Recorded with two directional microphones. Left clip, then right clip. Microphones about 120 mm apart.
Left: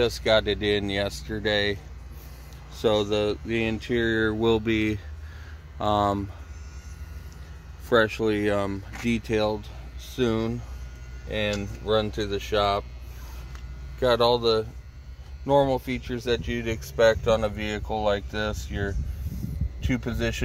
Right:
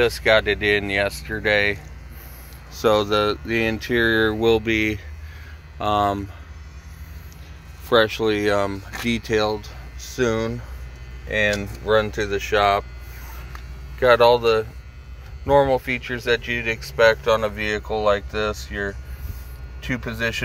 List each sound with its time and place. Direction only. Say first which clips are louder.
0.0 s speech: right 5 dB; 35° left (ahead or behind)
2.7 s speech: right 5 dB; 15° left (ahead or behind)
4.4 s speech: right 5 dB; 30° left (ahead or behind)
7.9 s speech: right 4 dB; 25° left (ahead or behind)
13.9 s speech: right 7 dB; 25° left (ahead or behind)